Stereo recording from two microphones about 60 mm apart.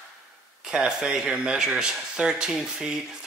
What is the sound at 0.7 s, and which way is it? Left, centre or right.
Speech, centre.